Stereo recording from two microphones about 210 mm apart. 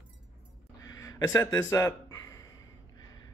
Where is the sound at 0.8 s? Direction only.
15° left (ahead or behind).